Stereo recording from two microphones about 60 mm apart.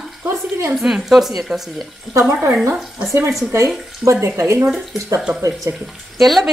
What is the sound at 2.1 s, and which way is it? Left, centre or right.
Speech, right.